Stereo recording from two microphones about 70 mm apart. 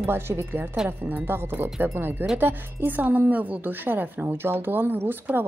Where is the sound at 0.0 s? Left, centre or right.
Right.